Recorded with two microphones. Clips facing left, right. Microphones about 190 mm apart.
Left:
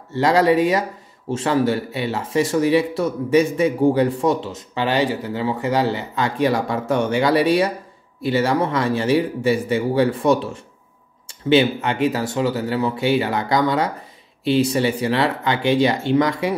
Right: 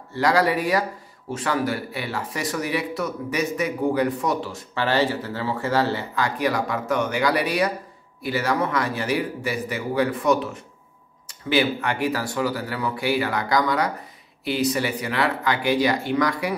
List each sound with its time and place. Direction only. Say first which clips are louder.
0.1 s speech: left 5 dB; 25° left (ahead or behind)